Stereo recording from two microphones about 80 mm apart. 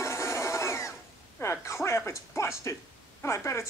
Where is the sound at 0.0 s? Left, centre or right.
Left.